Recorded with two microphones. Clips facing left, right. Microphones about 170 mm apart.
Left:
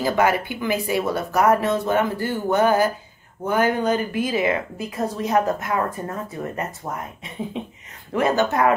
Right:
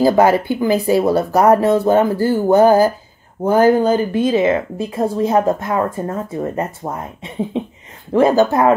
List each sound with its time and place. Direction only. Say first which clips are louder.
0.0 s a woman's voice: right 8 dB; 35° right (ahead or behind)